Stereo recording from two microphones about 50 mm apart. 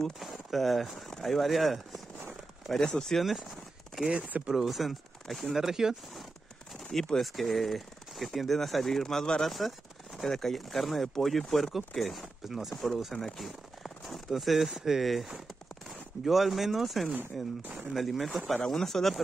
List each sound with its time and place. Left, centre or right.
0.2 s speech: centre
3.0 s speech: centre
3.3 s a sound: centre
4.0 s speech: right
4.5 s speech: centre
6.8 s speech: centre
14.7 s speech: centre
15.0 s speech: centre
17.1 s speech: right
17.9 s speech: centre